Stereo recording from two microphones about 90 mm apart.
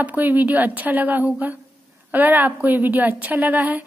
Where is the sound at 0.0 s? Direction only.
20° right (ahead or behind).